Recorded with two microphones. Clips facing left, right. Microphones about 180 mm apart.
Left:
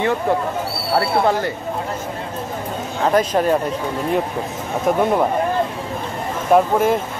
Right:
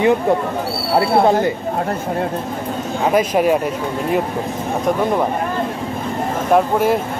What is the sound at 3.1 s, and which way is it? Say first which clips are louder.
Speech: right 1 dB; 10° right (ahead or behind).